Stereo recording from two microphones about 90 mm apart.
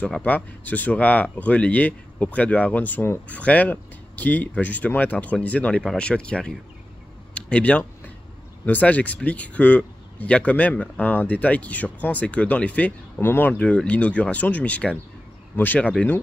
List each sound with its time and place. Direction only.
0.0 s speech: 15° left (ahead or behind)
7.3 s a sound: 15° left (ahead or behind)
8.6 s speech: 20° left (ahead or behind)